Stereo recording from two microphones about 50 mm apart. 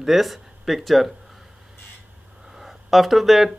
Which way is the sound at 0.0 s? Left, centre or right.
Centre.